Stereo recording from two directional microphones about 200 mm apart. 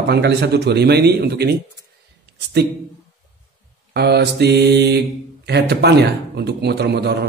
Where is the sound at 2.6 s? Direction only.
55° right (ahead or behind).